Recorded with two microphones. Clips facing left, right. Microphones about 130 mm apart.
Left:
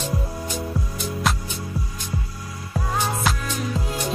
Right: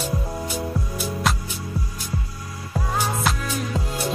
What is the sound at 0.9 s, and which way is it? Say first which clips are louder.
Music: even; centre (ahead or behind).